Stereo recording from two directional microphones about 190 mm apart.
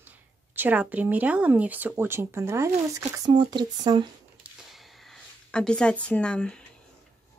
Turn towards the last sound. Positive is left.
turn(degrees=5)  # may be behind; listen again after turning